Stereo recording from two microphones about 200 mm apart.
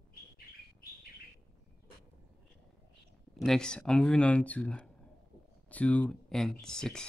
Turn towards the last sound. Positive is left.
turn(degrees=5)  # may be behind; listen again after turning